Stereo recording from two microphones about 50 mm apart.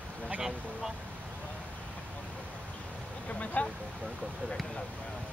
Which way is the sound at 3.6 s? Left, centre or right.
Left.